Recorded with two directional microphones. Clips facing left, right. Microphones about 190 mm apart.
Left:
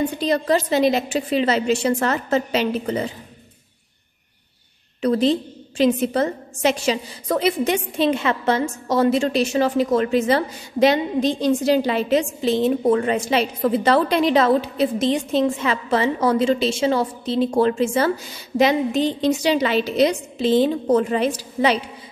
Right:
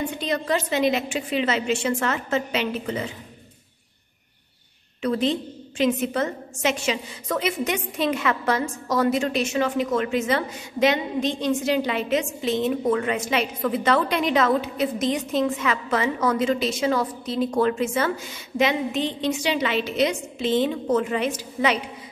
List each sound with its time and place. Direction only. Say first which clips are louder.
0.2 s a woman's voice: left 5 dB; 35° left (ahead or behind)
5.0 s a woman's voice: left 5 dB; 35° left (ahead or behind)